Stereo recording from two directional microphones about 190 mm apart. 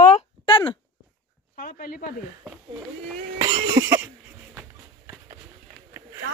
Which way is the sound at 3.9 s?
10° right (ahead or behind).